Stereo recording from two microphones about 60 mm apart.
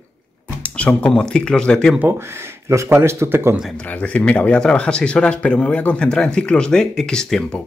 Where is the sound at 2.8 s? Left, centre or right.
Right.